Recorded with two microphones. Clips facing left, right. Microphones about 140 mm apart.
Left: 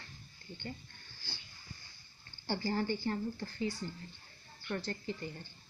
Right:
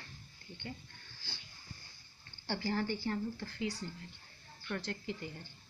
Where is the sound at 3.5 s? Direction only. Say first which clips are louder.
Left 3 dB; 90° right.